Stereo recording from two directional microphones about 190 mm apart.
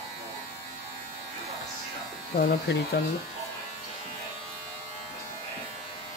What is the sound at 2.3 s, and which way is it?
Speech, 50° left (ahead or behind).